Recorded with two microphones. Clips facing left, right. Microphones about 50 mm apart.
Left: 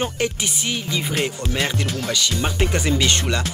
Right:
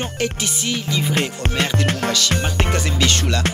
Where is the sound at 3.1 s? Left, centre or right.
Centre.